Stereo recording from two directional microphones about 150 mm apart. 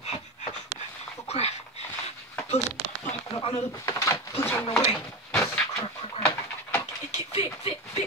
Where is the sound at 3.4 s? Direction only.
40° left (ahead or behind).